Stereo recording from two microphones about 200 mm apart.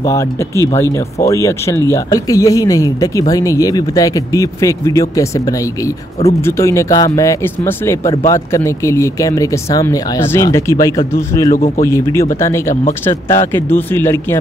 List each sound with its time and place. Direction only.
0.0 s speech: 15° left (ahead or behind)